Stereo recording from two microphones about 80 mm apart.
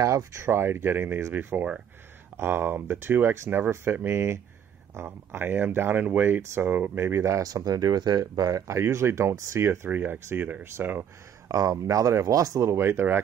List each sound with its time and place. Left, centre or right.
0.0 s speech: right
7.4 s speech: right
9.8 s speech: right
11.4 s speech: right